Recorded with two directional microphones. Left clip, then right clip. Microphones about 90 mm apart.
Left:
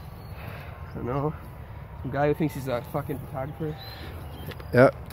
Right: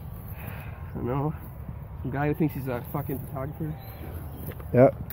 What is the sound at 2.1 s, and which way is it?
Speech, 35° left (ahead or behind).